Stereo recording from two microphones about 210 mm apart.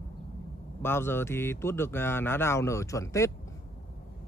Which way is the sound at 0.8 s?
10° left (ahead or behind).